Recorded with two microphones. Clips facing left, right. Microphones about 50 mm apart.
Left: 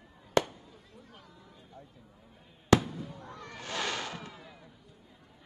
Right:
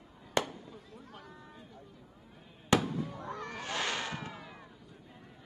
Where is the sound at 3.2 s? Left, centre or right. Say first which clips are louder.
Right 4 dB; right.